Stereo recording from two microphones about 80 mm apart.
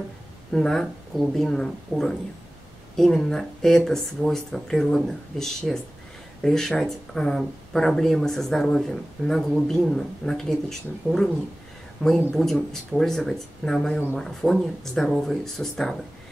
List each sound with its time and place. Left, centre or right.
0.5 s a woman's voice: centre
12.0 s a woman's voice: centre